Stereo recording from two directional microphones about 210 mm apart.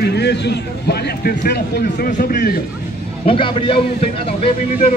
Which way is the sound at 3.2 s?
25° left (ahead or behind).